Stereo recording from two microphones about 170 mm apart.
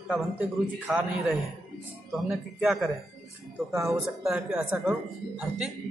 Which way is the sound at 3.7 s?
15° right (ahead or behind).